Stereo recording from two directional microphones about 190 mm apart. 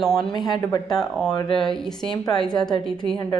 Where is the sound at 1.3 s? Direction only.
25° left (ahead or behind).